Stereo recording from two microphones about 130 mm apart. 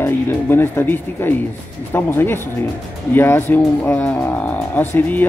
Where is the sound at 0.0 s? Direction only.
15° left (ahead or behind).